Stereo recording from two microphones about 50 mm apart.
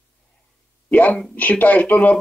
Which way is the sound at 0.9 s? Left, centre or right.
Left.